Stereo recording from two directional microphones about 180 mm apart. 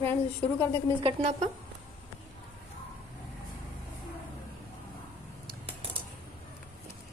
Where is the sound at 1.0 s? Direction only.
30° right (ahead or behind).